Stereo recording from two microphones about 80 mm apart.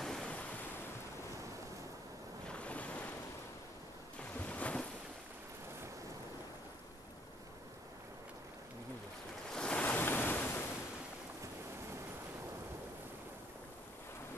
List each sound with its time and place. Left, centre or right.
0.0 s waves: centre
2.4 s ocean: centre
4.2 s ocean: centre
9.5 s waves: centre